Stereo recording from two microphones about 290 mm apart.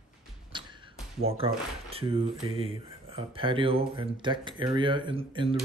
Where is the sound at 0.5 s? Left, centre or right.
Centre.